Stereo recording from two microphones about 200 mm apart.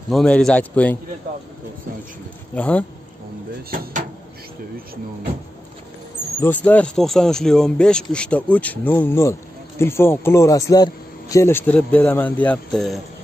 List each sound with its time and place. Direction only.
0.1 s speech: 5° left (ahead or behind)
2.5 s speech: 5° left (ahead or behind)
3.7 s speech: 45° right (ahead or behind)
6.4 s speech: 10° left (ahead or behind)